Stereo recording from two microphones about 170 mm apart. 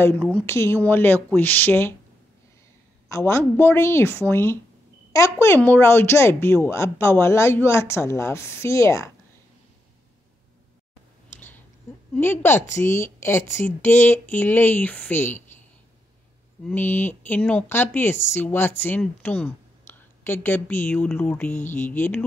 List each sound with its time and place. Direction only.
0.0 s a woman's voice: 10° left (ahead or behind)
3.1 s a woman's voice: 15° left (ahead or behind)
11.3 s a sound: 10° left (ahead or behind)
12.1 s a woman's voice: 10° left (ahead or behind)
16.6 s a woman's voice: 10° left (ahead or behind)